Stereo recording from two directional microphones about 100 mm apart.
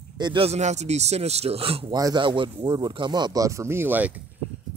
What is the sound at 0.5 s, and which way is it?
Speech, 90° right.